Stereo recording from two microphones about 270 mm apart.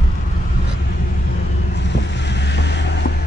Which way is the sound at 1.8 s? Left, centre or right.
Left.